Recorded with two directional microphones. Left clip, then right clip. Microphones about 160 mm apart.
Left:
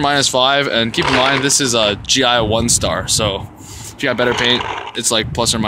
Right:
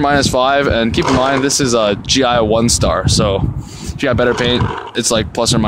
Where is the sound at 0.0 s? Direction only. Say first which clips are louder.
Right 1 dB; 50° right (ahead or behind).